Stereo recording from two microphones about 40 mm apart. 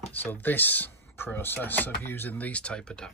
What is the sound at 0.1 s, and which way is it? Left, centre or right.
Speech, left.